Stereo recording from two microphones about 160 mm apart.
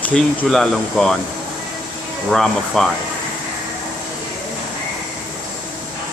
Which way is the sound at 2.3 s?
5° left (ahead or behind).